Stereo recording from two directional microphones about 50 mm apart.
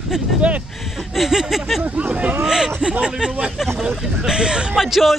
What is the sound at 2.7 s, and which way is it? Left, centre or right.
Speech, right.